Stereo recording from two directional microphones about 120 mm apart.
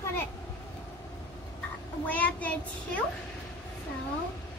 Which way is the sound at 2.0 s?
10° left (ahead or behind).